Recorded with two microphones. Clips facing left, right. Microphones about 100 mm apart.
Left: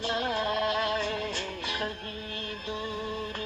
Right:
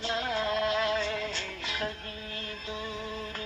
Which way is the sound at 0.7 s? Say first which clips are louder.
Even; 25° right (ahead or behind).